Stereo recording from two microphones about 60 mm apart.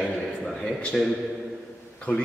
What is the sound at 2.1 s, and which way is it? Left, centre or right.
Speech, left.